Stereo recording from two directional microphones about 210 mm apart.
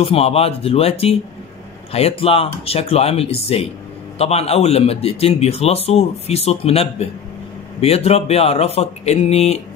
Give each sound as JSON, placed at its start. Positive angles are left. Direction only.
{"t": 0.0, "sound": "a man's voice", "side_deg": 30}